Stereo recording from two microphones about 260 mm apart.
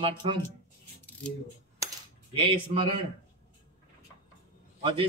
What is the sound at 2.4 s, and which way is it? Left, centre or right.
Speech, right.